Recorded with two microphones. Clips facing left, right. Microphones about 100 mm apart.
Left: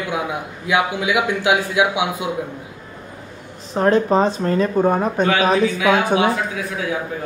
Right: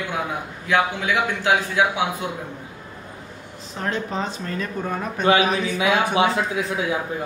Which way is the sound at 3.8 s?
40° left (ahead or behind).